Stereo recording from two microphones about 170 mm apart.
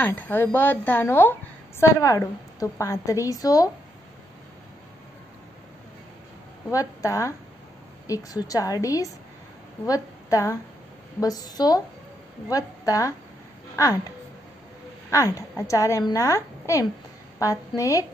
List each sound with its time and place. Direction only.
0.0 s a woman's voice: 10° left (ahead or behind)
6.7 s a woman's voice: 20° left (ahead or behind)
15.0 s a woman's voice: 20° left (ahead or behind)